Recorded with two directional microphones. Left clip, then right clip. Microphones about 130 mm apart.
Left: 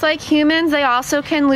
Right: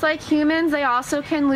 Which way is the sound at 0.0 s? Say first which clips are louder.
Left 4 dB; 40° left (ahead or behind).